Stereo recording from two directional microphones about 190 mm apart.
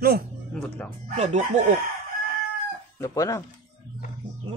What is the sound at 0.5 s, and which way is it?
Speech, 5° left (ahead or behind).